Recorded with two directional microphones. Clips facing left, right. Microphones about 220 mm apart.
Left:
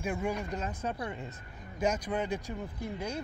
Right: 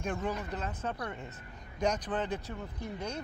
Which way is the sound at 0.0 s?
10° left (ahead or behind).